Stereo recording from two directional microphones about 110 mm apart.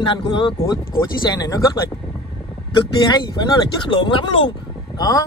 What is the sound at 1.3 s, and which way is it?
Speech, 35° left (ahead or behind).